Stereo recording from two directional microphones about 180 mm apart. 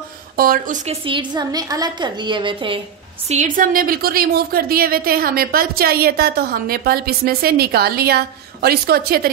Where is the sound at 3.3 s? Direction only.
45° right (ahead or behind).